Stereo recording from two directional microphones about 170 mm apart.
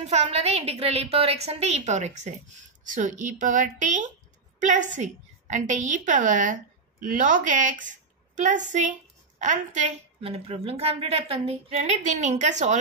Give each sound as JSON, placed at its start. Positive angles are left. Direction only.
{"t": 0.0, "sound": "a woman's voice", "side_deg": -40}